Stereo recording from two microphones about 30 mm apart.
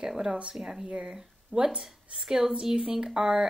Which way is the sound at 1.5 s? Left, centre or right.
Left.